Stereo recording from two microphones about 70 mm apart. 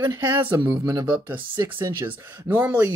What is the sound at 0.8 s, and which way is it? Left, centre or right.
Speech, right.